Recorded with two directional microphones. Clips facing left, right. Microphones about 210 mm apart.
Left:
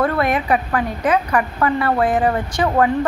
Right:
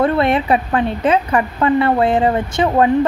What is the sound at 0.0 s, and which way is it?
Speech, 25° right (ahead or behind).